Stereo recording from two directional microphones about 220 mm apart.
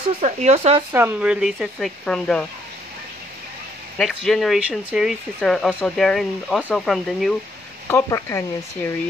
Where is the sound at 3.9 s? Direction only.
Centre (ahead or behind).